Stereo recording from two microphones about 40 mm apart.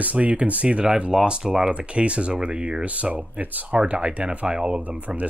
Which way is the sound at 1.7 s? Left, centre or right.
Right.